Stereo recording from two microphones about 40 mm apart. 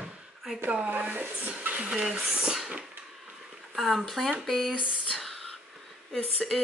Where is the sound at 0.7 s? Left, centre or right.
Right.